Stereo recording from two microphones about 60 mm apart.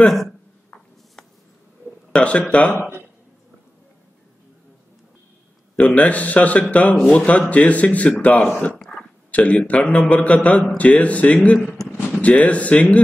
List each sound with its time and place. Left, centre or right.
0.0 s speech: centre
2.1 s speech: centre
5.8 s speech: left